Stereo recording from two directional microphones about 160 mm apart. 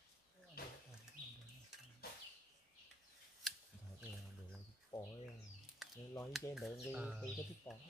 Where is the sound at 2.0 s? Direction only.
70° left (ahead or behind).